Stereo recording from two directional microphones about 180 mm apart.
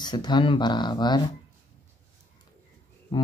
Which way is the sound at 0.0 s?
25° left (ahead or behind).